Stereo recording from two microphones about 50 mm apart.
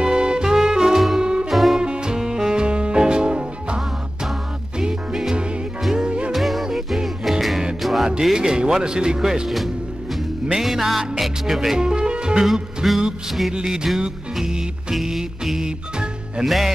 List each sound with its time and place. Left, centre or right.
0.0 s music: centre
1.2 s music: centre
1.5 s music: centre
1.8 s music: centre
6.0 s music: right
6.3 s music: centre
8.1 s speech: centre
10.5 s music: centre
11.8 s music: centre
12.8 s music: centre
13.5 s speech: centre
14.4 s music: centre
16.4 s music: centre